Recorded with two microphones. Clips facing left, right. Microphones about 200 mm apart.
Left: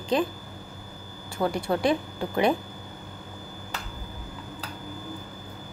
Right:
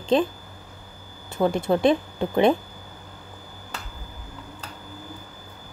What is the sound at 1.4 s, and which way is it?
Speech, 20° right (ahead or behind).